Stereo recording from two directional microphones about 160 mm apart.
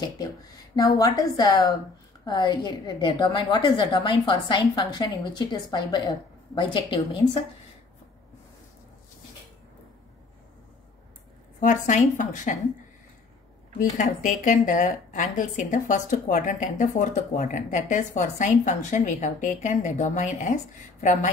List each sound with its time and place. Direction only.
0.7 s a woman's voice: 20° left (ahead or behind)
11.6 s speech: 50° left (ahead or behind)
13.7 s speech: 55° left (ahead or behind)